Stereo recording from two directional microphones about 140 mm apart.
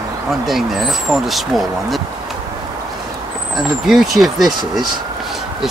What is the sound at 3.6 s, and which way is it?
Speech, centre (ahead or behind).